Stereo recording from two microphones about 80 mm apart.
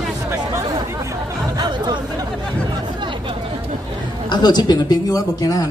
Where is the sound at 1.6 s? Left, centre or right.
Right.